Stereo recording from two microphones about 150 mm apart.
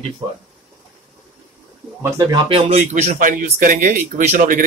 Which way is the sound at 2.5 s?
45° right (ahead or behind).